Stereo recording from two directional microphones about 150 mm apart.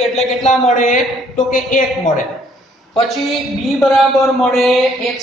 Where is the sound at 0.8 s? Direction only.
55° left (ahead or behind).